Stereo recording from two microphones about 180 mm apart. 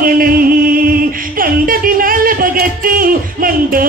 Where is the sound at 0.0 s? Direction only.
55° right (ahead or behind).